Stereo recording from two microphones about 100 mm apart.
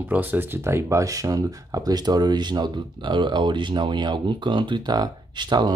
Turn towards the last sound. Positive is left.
turn(degrees=-45)  # may be behind; listen again after turning